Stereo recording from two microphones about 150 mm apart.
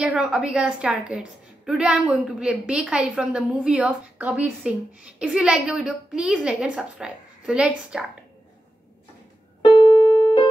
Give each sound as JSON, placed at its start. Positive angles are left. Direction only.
{"t": 0.0, "sound": "a woman's voice", "side_deg": -10}
{"t": 9.6, "sound": "keyboard", "side_deg": 35}